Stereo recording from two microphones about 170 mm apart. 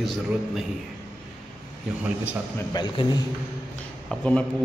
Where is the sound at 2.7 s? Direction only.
25° left (ahead or behind).